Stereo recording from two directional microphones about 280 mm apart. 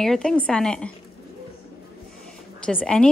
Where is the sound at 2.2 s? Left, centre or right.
Centre.